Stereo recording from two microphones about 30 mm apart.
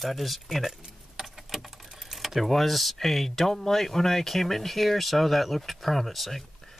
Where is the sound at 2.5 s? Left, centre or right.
Centre.